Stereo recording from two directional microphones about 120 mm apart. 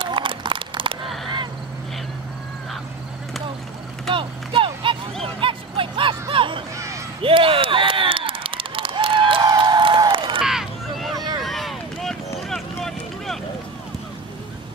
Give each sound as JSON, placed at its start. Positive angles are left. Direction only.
{"t": 0.0, "sound": "run", "side_deg": -45}
{"t": 4.1, "sound": "a sound", "side_deg": -45}
{"t": 10.4, "sound": "a sound", "side_deg": -5}
{"t": 11.1, "sound": "vehicle", "side_deg": -35}
{"t": 11.4, "sound": "boat", "side_deg": 0}
{"t": 12.4, "sound": "vehicle", "side_deg": 0}